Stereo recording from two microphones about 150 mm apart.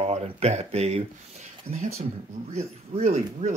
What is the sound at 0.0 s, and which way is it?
Speech, 45° right (ahead or behind).